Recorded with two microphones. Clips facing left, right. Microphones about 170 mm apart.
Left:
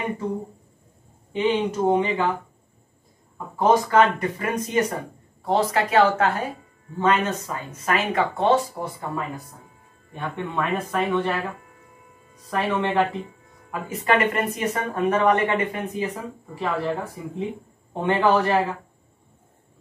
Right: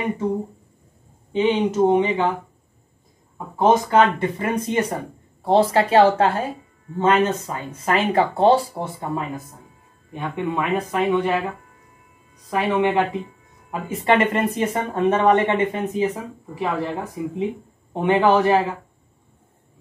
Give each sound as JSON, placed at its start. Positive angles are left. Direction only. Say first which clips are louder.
{"t": 1.3, "sound": "speech", "louder": "right 3 dB", "side_deg": -20}
{"t": 3.5, "sound": "speech", "louder": "right 2 dB", "side_deg": -20}
{"t": 10.1, "sound": "speech", "louder": "right 3 dB", "side_deg": -15}
{"t": 13.7, "sound": "speech", "louder": "right 3 dB", "side_deg": -25}